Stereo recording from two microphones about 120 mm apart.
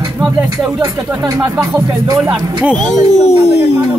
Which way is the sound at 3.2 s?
65° left (ahead or behind).